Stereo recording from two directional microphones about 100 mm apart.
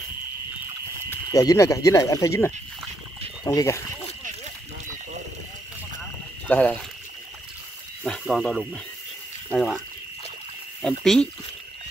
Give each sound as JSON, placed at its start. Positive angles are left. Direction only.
{"t": 1.3, "sound": "speech", "side_deg": 35}
{"t": 6.4, "sound": "speech", "side_deg": 15}
{"t": 8.0, "sound": "speech", "side_deg": 5}
{"t": 10.8, "sound": "speech", "side_deg": 5}